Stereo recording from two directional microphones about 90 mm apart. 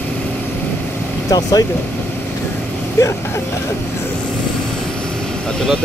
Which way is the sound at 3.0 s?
35° left (ahead or behind).